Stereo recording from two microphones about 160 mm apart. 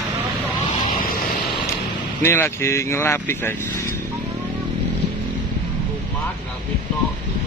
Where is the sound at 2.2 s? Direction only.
15° left (ahead or behind).